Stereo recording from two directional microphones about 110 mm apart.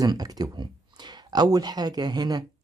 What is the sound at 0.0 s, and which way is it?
Speech, 35° right (ahead or behind).